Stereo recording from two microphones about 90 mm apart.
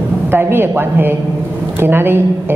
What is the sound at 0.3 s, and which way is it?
A woman's voice, 25° right (ahead or behind).